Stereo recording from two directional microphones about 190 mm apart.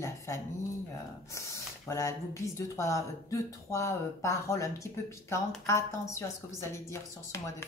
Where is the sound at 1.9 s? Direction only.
15° left (ahead or behind).